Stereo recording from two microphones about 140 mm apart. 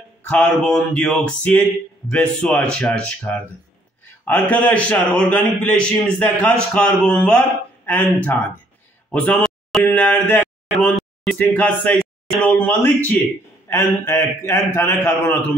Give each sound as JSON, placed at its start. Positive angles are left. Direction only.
{"t": 0.3, "sound": "speech", "side_deg": 10}
{"t": 9.1, "sound": "a sound", "side_deg": 10}
{"t": 11.4, "sound": "speech", "side_deg": 10}